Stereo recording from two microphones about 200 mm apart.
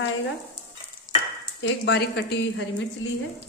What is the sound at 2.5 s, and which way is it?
Speech, 70° left (ahead or behind).